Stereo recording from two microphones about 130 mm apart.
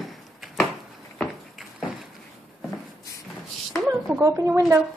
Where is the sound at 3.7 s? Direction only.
Centre (ahead or behind).